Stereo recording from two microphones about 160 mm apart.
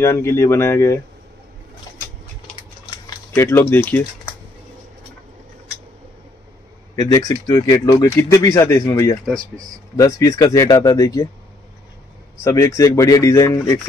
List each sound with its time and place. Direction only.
0.0 s speech: 15° left (ahead or behind)
3.3 s speech: 15° left (ahead or behind)
7.0 s speech: 20° left (ahead or behind)
12.4 s speech: 20° left (ahead or behind)